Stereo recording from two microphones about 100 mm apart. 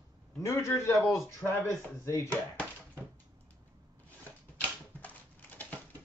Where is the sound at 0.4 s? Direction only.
30° left (ahead or behind).